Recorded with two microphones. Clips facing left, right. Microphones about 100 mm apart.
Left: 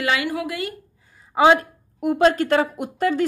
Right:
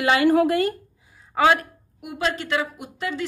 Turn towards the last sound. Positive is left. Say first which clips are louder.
# left 8 dB
turn(degrees=50)  # may be behind; listen again after turning